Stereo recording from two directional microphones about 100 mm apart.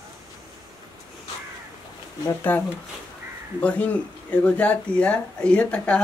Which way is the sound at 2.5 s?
20° left (ahead or behind).